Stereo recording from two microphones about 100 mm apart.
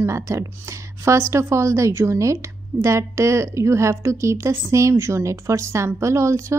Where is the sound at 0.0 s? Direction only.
30° right (ahead or behind).